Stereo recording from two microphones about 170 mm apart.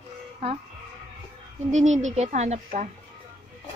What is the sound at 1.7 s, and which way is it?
A woman's voice, 45° right (ahead or behind).